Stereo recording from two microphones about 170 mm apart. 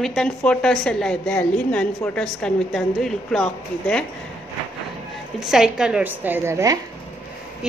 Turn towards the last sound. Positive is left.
turn(degrees=-15)  # may be behind; listen again after turning